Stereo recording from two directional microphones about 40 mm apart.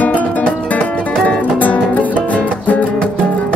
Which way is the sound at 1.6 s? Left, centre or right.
Left.